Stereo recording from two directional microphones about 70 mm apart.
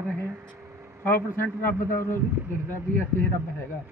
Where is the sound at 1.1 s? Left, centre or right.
Left.